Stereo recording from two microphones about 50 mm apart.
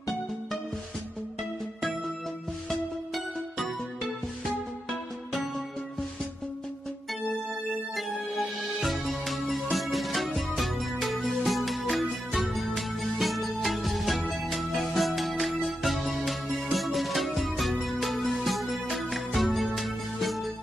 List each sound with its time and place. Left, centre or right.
3.5 s music: centre
7.9 s music: centre